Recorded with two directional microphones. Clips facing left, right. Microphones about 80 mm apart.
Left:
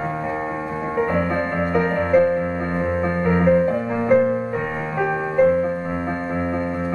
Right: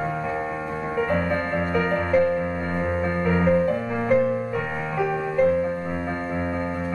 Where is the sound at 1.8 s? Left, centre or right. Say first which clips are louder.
Left 4 dB; centre.